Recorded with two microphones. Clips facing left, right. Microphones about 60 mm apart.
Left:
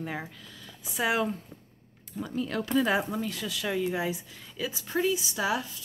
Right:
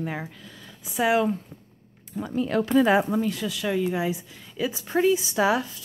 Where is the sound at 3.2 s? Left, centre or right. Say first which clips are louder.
Right 6 dB; centre.